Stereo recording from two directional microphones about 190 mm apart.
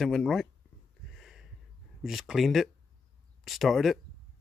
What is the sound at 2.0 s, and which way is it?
Speech, centre (ahead or behind).